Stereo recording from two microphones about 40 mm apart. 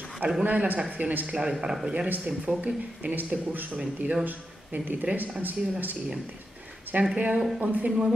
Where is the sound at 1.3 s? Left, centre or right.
Centre.